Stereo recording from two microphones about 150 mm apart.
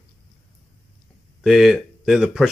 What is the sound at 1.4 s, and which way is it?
Speech, 5° right (ahead or behind).